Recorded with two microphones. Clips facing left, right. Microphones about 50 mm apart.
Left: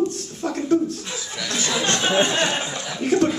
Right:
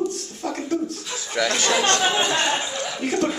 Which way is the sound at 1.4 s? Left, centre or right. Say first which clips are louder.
Right 3 dB; right.